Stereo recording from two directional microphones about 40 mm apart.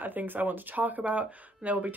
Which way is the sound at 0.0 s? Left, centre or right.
Right.